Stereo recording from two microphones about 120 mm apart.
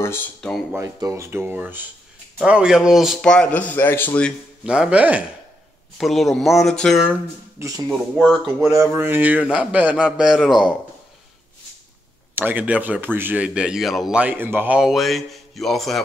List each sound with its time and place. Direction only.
0.4 s speech: 5° left (ahead or behind)
0.7 s a man's voice: 25° right (ahead or behind); by 4.3 s 15° left (ahead or behind)
4.6 s a man's voice: 10° right (ahead or behind)
5.9 s speech: centre (ahead or behind)
7.0 s a man's voice: 15° right (ahead or behind)
8.6 s a man's voice: 20° right (ahead or behind); by 10.8 s 5° right (ahead or behind)
12.4 s a man's voice: 15° right (ahead or behind)
14.8 s speech: centre (ahead or behind)